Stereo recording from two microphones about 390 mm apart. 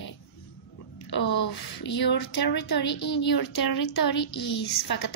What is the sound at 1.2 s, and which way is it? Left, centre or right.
A woman's voice, left.